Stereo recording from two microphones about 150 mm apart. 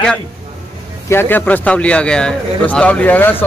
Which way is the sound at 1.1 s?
15° left (ahead or behind).